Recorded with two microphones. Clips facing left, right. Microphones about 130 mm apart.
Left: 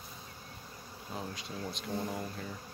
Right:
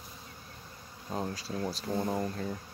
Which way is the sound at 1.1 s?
35° right (ahead or behind).